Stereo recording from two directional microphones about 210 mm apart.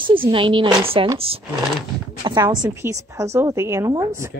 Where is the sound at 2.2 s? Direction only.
20° right (ahead or behind).